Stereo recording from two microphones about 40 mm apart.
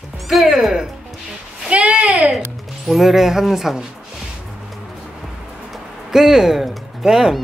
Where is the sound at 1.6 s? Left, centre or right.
Right.